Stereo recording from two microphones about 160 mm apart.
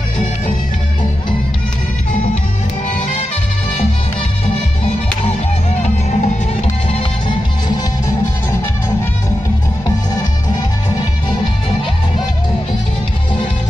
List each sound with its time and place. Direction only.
5.8 s music: 40° left (ahead or behind)